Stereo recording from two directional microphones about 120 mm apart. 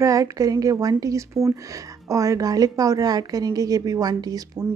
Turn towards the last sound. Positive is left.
turn(degrees=-30)  # may be behind; listen again after turning